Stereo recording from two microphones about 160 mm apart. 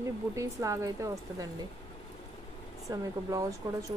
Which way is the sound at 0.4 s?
20° right (ahead or behind).